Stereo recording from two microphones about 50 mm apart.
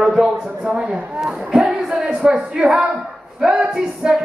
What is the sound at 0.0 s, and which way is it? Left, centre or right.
A man's voice, centre.